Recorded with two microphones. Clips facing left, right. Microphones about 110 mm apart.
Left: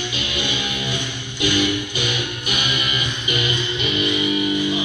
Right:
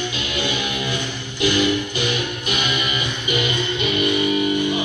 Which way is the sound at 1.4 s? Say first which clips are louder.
Right 2 dB; 45° right (ahead or behind).